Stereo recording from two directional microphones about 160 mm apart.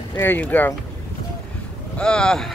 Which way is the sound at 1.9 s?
5° left (ahead or behind).